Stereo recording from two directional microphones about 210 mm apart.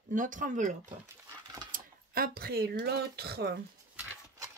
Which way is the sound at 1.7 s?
45° right (ahead or behind).